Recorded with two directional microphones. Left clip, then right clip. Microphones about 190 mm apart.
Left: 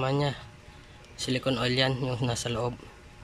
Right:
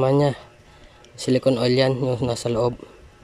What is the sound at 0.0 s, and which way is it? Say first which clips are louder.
Speech: right 10 dB; 30° right (ahead or behind).